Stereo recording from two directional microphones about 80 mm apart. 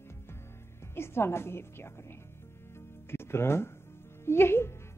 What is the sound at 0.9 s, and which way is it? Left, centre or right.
A woman's voice, left.